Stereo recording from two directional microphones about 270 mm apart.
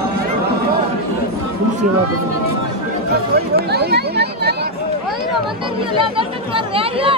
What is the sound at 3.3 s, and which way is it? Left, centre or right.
Speech, right.